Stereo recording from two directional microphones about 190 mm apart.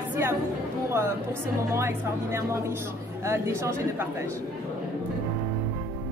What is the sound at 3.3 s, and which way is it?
Speech, 15° right (ahead or behind).